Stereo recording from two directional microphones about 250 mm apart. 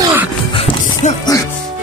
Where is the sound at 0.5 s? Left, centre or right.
Centre.